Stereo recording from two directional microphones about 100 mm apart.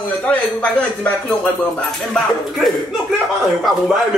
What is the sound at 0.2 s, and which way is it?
Speech, 10° left (ahead or behind).